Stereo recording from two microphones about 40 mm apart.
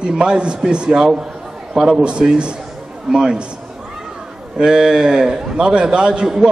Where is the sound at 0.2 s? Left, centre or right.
Right.